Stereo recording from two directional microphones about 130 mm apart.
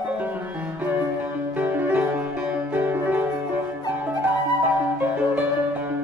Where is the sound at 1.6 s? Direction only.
15° right (ahead or behind).